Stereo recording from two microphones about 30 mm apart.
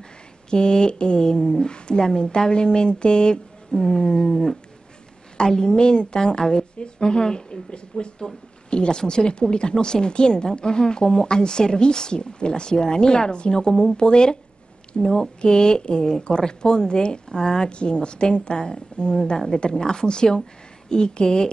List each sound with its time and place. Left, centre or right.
0.5 s speech: left
3.7 s a sound: centre
4.1 s a woman's voice: left
15.0 s a sound: centre
15.4 s speech: left
17.6 s a woman's voice: left